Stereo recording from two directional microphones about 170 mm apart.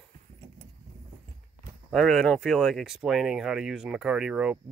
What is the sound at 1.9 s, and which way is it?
Speech, centre (ahead or behind).